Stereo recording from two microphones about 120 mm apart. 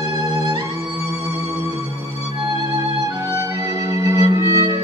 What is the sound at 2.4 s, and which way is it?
Music, 30° right (ahead or behind).